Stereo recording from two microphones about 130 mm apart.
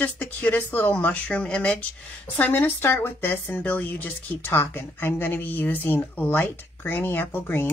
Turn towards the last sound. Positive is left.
turn(degrees=15)  # may be behind; listen again after turning